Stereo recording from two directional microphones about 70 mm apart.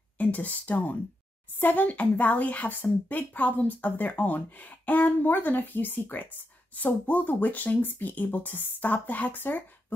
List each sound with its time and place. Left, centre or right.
0.2 s speech: left